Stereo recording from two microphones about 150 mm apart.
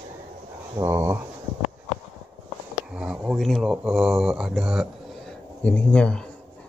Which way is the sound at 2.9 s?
5° right (ahead or behind).